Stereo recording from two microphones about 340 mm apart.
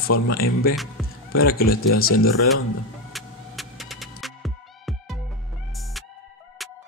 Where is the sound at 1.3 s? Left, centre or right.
Left.